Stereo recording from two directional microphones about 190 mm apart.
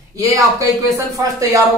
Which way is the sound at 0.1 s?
15° right (ahead or behind).